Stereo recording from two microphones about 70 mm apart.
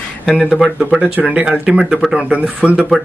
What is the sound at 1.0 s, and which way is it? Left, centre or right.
Speech, centre.